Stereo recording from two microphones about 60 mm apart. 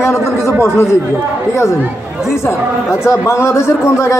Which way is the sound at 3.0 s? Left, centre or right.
Left.